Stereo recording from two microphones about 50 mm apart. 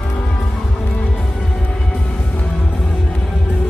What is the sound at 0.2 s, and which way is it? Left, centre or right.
Music, centre.